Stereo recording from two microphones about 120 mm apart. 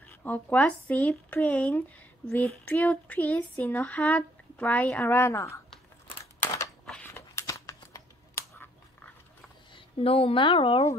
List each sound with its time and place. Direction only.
0.0 s speech: 15° left (ahead or behind)
7.1 s crumpling: 20° left (ahead or behind)
9.8 s a woman's voice: 50° left (ahead or behind)